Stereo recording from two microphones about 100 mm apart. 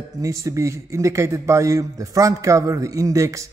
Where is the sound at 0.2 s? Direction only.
30° right (ahead or behind).